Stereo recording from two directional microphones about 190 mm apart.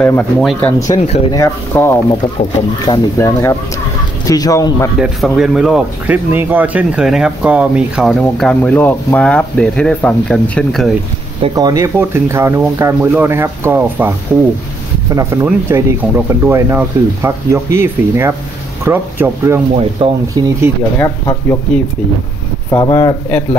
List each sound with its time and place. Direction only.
0.0 s speech: 10° left (ahead or behind)
0.9 s speech: 35° left (ahead or behind)
1.3 s speech: 15° left (ahead or behind)
4.9 s speech: 5° right (ahead or behind)
11.4 s speech: 20° right (ahead or behind)
21.0 s speech: 10° left (ahead or behind)